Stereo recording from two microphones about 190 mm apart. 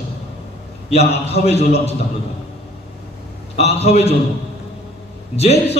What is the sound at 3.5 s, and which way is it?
Speech, 35° left (ahead or behind).